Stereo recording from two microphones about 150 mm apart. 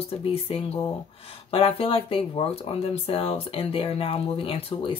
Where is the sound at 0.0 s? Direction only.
40° left (ahead or behind).